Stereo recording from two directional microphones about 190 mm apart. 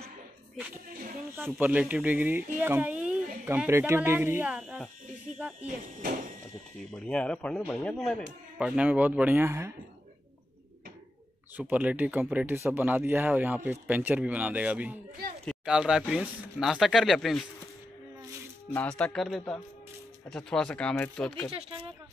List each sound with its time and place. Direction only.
1.3 s speech: 10° right (ahead or behind)
6.9 s speech: 5° left (ahead or behind)
8.5 s speech: 5° right (ahead or behind)
11.5 s speech: 10° right (ahead or behind)
18.7 s speech: 5° left (ahead or behind)
21.5 s speech: 30° right (ahead or behind)